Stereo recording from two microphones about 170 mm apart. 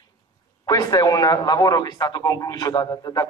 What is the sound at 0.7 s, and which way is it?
A man's voice, 20° left (ahead or behind).